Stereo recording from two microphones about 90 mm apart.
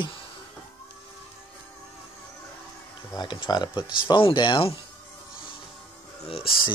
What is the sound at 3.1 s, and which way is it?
Speech, 55° left (ahead or behind).